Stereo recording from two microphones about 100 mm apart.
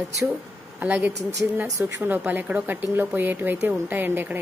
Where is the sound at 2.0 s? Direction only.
20° right (ahead or behind).